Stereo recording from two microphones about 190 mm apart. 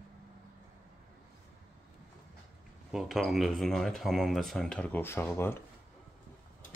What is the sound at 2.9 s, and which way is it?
Speech, centre (ahead or behind).